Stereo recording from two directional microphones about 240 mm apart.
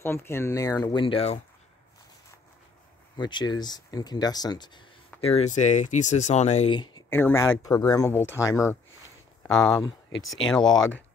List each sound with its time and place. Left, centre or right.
0.0 s speech: centre
3.2 s speech: centre
5.2 s speech: left; by 9.8 s centre
9.8 s speech: centre
10.1 s speech: left